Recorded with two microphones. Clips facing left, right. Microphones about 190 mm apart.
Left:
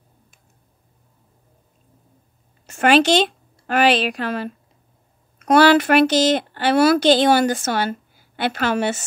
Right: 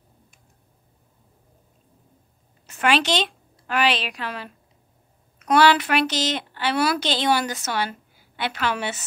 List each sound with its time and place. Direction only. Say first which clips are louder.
2.6 s a woman's voice: left 6 dB; 45° left (ahead or behind)